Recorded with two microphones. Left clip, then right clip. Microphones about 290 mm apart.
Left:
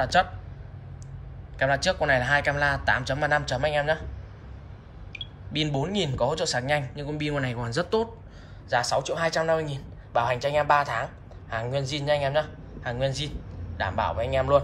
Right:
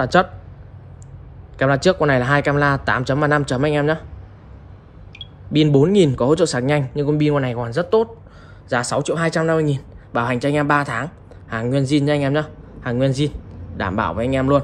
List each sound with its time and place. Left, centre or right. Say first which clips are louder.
0.0 s speech: right 6 dB; centre
1.6 s speech: right 7 dB; centre
5.1 s a sound: right 1 dB; centre
5.5 s speech: right 13 dB; centre
8.6 s speech: right 5 dB; right